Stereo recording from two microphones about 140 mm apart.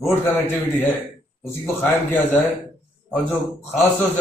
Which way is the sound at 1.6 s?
15° left (ahead or behind).